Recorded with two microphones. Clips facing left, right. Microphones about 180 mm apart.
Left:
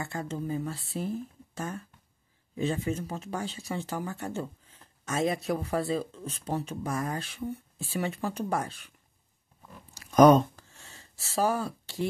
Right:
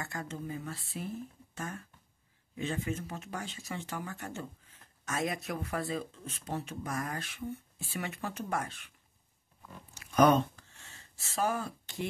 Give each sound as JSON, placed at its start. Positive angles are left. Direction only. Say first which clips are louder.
{"t": 0.0, "sound": "speech", "louder": "left 5 dB", "side_deg": 30}
{"t": 2.5, "sound": "speech", "louder": "left 5 dB", "side_deg": 30}
{"t": 9.9, "sound": "a sound", "louder": "left 6 dB", "side_deg": 40}